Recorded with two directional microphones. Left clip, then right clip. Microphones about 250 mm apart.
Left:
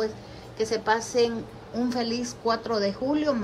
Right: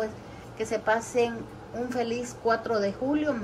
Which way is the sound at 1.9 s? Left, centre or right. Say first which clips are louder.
Even; centre.